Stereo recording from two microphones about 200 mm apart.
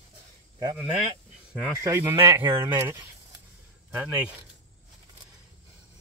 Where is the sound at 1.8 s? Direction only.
15° right (ahead or behind).